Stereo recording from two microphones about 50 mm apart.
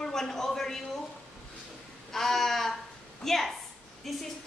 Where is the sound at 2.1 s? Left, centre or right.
Centre.